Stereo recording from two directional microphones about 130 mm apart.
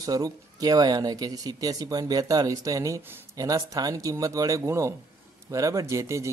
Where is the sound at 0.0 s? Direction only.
30° right (ahead or behind).